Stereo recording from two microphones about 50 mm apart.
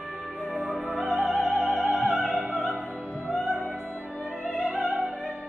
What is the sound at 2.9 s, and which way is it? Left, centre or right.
Music, centre.